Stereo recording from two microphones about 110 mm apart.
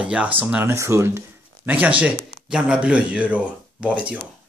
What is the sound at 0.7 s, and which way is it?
Speech, 25° right (ahead or behind).